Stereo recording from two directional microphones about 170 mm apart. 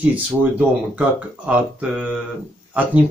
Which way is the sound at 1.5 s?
10° right (ahead or behind).